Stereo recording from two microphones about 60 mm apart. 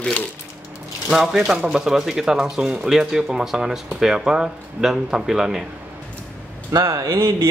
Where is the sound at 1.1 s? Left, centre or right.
Centre.